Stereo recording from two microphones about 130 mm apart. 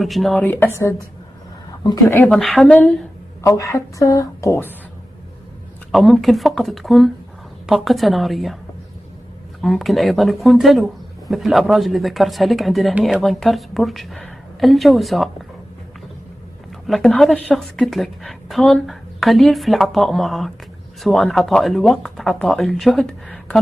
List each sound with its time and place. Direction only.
0.0 s a woman's voice: centre (ahead or behind)
0.3 s a woman's voice: 15° left (ahead or behind)
2.0 s a woman's voice: 15° left (ahead or behind)
2.3 s a woman's voice: centre (ahead or behind)
3.4 s a woman's voice: 25° left (ahead or behind)
5.9 s a woman's voice: centre (ahead or behind)
9.6 s a woman's voice: centre (ahead or behind)
16.8 s a woman's voice: centre (ahead or behind)